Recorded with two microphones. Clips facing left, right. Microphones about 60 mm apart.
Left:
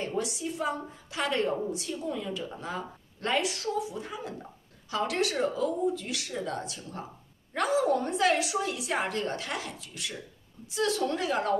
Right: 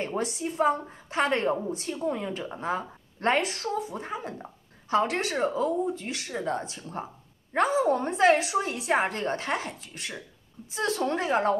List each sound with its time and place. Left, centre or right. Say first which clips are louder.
0.0 s a woman's voice: right 2 dB; right